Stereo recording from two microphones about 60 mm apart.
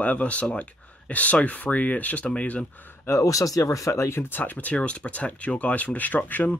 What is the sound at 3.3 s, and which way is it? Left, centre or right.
Speech, left.